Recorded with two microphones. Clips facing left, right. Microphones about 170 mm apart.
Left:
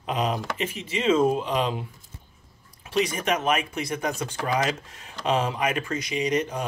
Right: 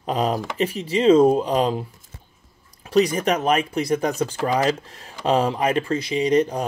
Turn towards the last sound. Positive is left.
turn(degrees=-35)  # may be behind; listen again after turning